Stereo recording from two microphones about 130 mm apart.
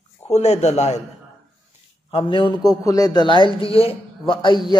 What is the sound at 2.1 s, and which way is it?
Speech, 45° left (ahead or behind).